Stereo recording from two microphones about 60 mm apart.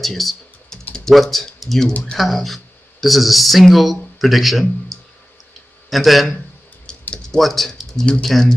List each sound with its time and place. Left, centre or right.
0.0 s typing: centre
0.9 s speech: centre
5.9 s a man's voice: centre
6.9 s typing: centre
7.2 s a man's voice: centre